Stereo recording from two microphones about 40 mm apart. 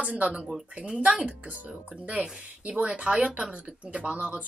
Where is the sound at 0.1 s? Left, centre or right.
Right.